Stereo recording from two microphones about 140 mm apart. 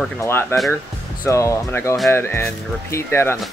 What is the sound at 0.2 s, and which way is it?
Speech, 15° left (ahead or behind).